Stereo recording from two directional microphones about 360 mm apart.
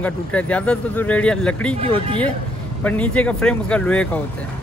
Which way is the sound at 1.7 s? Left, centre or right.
Centre.